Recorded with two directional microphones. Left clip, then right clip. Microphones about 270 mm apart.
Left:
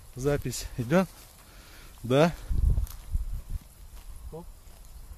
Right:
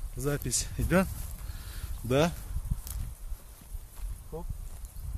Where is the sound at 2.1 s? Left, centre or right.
Left.